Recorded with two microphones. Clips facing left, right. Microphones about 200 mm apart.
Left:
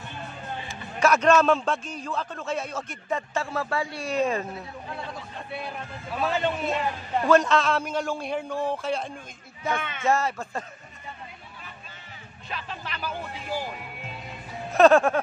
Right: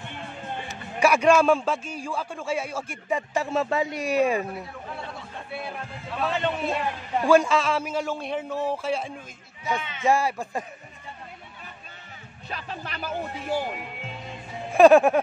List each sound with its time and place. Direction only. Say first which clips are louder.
0.9 s a man's voice: right 1 dB; 10° right (ahead or behind)
6.1 s a man's voice: even; 5° left (ahead or behind)
7.2 s a man's voice: right 1 dB; 10° right (ahead or behind)
9.6 s speech: even; 55° left (ahead or behind)
10.0 s a man's voice: right 2 dB; 15° right (ahead or behind)
12.4 s a woman's voice: right 1 dB; 45° right (ahead or behind)
13.7 s music: right 2 dB; 20° right (ahead or behind)